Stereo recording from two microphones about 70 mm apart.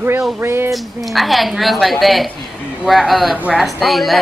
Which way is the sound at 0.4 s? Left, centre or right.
Right.